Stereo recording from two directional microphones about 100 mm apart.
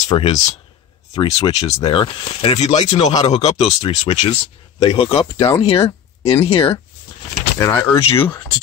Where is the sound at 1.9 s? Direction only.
65° left (ahead or behind); by 2.9 s 80° left.